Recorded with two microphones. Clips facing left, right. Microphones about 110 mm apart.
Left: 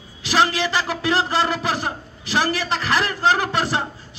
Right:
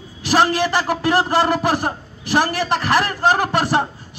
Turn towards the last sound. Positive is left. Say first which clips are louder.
# right 4 dB
turn(degrees=-50)  # may be behind; listen again after turning